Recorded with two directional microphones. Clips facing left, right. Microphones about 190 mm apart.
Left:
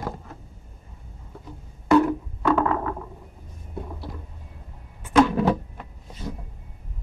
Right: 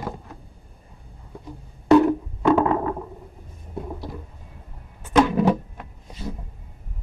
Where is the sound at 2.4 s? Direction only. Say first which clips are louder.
Right 3 dB; 20° right (ahead or behind).